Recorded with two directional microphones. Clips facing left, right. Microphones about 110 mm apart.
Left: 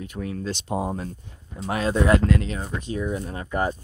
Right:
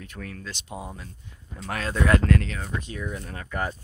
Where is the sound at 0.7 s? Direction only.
40° left (ahead or behind).